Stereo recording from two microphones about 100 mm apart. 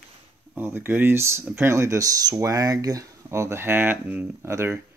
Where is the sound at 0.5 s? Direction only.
20° right (ahead or behind).